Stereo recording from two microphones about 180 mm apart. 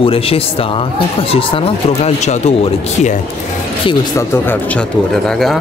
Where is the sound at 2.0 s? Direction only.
35° left (ahead or behind).